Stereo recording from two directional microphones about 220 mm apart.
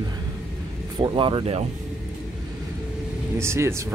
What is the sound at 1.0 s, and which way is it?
Speech, 20° right (ahead or behind).